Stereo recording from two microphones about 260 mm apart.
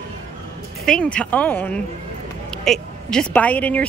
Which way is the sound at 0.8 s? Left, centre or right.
Centre.